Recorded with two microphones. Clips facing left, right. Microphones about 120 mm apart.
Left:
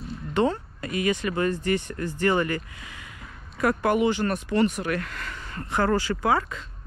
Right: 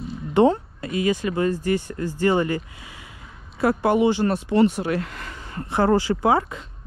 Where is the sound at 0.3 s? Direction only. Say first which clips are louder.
Right 6 dB; 20° right (ahead or behind).